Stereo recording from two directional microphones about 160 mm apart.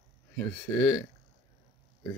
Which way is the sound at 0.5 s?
10° left (ahead or behind).